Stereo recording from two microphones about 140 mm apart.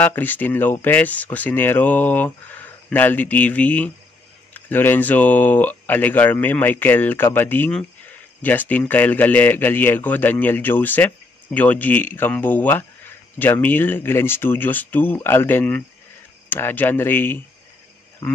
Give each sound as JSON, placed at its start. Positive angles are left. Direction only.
{"t": 0.0, "sound": "speech", "side_deg": 15}